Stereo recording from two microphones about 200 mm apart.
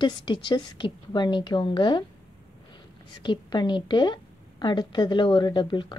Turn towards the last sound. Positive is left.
turn(degrees=25)  # may be behind; listen again after turning